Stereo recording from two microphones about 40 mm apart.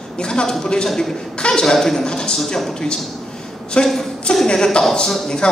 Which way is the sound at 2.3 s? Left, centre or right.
Centre.